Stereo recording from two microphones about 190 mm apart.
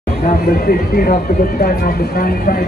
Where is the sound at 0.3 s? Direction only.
50° left (ahead or behind).